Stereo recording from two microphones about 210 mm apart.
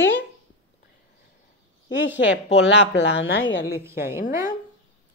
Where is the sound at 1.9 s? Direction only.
60° left (ahead or behind).